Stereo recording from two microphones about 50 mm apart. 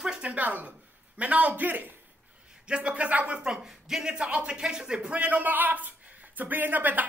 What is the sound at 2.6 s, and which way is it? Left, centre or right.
Speech, right.